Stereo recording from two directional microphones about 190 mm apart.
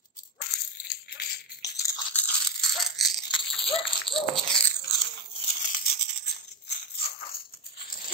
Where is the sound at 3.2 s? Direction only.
25° left (ahead or behind).